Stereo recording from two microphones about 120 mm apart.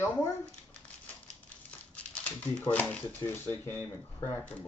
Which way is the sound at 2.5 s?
10° left (ahead or behind).